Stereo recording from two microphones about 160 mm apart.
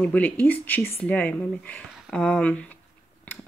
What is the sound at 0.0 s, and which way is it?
Speech, 10° left (ahead or behind).